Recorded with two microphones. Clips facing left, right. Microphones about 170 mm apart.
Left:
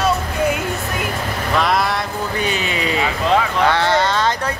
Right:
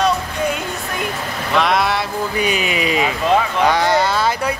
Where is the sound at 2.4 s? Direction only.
15° right (ahead or behind).